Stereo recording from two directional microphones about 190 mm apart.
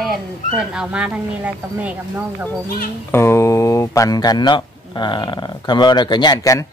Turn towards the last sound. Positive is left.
turn(degrees=20)  # may be behind; listen again after turning